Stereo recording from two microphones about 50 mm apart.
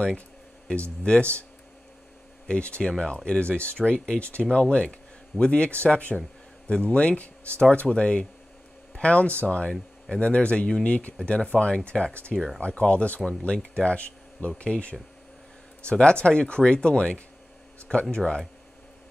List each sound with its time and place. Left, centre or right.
1.0 s speech: left
2.4 s speech: left